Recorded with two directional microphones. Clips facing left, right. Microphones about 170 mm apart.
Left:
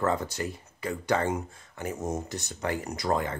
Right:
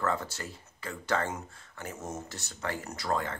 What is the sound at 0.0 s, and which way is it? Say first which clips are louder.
Speech: left 4 dB; 20° left (ahead or behind).